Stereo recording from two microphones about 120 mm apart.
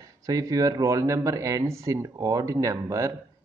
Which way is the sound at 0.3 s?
30° right (ahead or behind).